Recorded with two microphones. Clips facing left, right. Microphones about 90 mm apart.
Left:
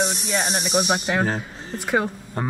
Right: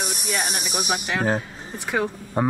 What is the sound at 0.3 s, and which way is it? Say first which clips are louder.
Speech: left 3 dB; 25° left (ahead or behind).